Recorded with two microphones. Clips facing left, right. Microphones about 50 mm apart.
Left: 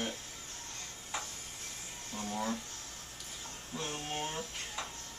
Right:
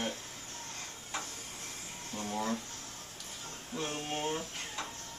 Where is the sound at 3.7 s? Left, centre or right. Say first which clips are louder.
Right 3 dB; centre.